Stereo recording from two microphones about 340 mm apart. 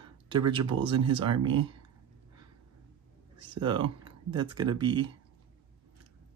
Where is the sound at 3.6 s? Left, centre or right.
Centre.